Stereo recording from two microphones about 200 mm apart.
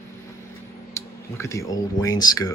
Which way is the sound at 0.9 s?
15° left (ahead or behind).